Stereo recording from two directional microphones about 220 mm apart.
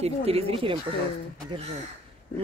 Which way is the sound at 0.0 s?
25° right (ahead or behind).